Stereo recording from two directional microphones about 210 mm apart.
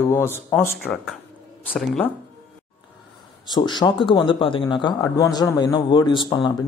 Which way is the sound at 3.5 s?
20° left (ahead or behind).